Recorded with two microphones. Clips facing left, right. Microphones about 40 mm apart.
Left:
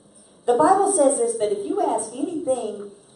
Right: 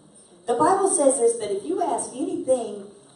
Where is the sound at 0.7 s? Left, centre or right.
Centre.